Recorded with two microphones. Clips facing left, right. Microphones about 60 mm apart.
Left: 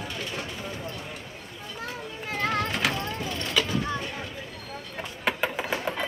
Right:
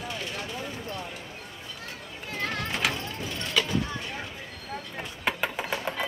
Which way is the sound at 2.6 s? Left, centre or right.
Centre.